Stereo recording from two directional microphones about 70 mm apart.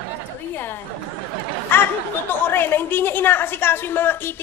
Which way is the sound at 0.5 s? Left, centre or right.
Left.